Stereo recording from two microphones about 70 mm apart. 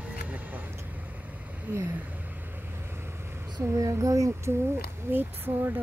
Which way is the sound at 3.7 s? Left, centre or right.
Right.